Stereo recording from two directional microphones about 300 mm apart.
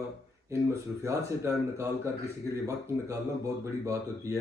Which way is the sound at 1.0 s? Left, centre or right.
Centre.